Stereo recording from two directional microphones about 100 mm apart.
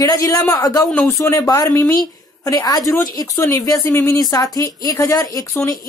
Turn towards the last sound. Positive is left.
turn(degrees=35)  # may be behind; listen again after turning